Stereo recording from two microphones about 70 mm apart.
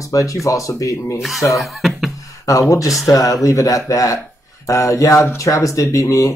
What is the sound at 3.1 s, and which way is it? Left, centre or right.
Speech, left.